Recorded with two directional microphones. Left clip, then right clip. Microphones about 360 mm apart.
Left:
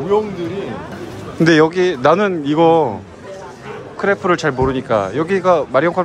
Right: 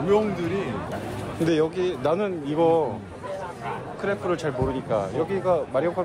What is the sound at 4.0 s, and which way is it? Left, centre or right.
Speech, left.